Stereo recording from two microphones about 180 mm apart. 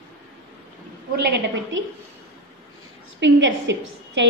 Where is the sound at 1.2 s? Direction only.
75° right (ahead or behind).